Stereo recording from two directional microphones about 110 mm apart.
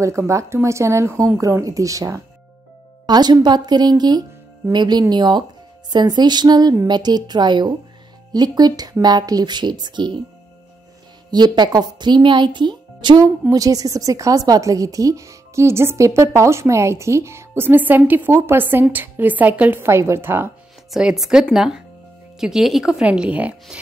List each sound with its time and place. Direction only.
0.0 s a woman's voice: 25° right (ahead or behind); by 10.1 s 45° right (ahead or behind)
11.2 s speech: 40° right (ahead or behind)
13.5 s a woman's voice: 35° right (ahead or behind)
20.9 s speech: 5° right (ahead or behind)